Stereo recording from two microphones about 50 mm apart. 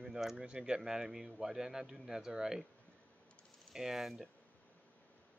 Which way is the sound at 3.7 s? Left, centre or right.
Centre.